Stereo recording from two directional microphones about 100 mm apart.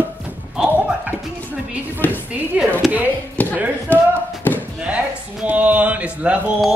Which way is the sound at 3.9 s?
20° left (ahead or behind).